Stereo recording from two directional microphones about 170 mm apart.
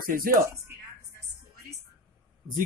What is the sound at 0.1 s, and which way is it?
Speech, 55° right (ahead or behind).